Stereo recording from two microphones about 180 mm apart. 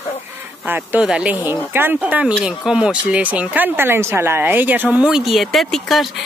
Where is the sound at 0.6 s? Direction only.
10° right (ahead or behind).